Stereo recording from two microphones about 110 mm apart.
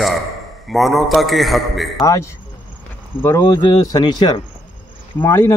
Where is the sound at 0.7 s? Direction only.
Centre (ahead or behind).